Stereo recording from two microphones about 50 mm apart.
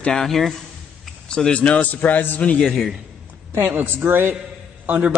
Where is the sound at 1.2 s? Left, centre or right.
Centre; by 2.3 s left.